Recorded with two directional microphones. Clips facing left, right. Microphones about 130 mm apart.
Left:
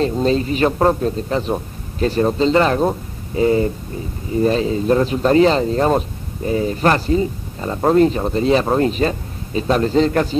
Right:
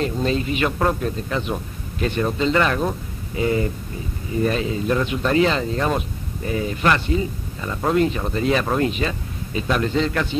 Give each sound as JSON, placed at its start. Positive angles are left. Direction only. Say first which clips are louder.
{"t": 0.0, "sound": "speech", "louder": "left 5 dB", "side_deg": 35}